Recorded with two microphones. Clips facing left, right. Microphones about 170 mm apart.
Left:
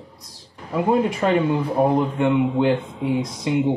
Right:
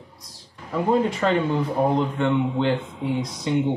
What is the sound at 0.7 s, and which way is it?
A man's voice, 10° left (ahead or behind).